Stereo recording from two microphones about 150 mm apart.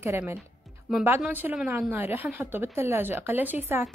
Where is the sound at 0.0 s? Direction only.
15° right (ahead or behind).